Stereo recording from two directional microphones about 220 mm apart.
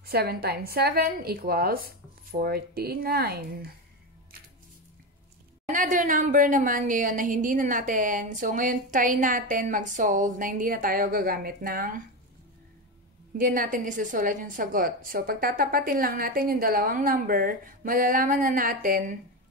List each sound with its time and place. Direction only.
0.0 s a woman's voice: 45° right (ahead or behind)
5.7 s a woman's voice: 35° right (ahead or behind)
13.4 s a woman's voice: 40° right (ahead or behind)